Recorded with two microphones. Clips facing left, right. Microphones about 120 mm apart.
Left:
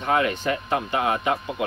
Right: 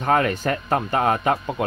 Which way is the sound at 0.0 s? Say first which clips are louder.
Right 2 dB; 45° right (ahead or behind).